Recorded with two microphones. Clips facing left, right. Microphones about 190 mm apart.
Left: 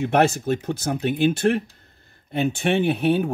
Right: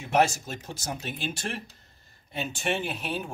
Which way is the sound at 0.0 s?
60° left (ahead or behind).